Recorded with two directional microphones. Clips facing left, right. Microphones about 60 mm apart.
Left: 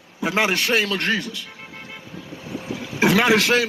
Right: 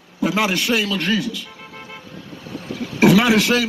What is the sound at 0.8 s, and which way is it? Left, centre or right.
Speech, left.